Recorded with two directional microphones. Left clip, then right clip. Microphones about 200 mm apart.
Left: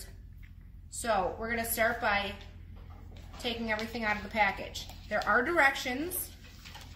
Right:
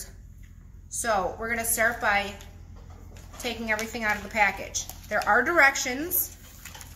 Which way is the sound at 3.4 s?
5° right (ahead or behind).